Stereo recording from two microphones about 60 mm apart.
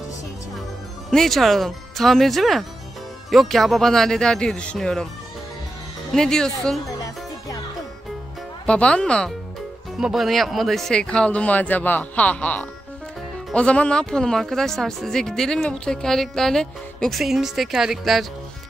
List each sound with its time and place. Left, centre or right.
1.1 s speech: centre
6.1 s speech: centre
7.0 s music: left
8.6 s speech: centre
9.9 s speech: centre
11.0 s speech: centre